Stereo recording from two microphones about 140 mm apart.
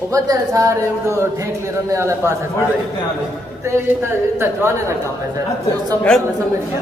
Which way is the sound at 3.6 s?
20° right (ahead or behind).